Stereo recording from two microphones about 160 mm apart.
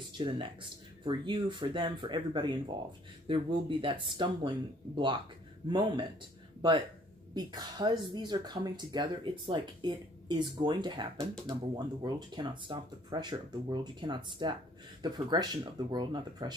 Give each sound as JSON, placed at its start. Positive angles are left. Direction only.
{"t": 0.2, "sound": "speech", "side_deg": -30}
{"t": 7.3, "sound": "speech", "side_deg": -25}